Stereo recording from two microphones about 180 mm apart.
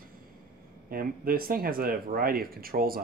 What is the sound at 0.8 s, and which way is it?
Speech, 55° right (ahead or behind).